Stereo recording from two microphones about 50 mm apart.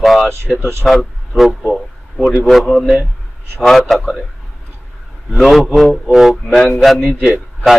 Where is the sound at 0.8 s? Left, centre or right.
Centre.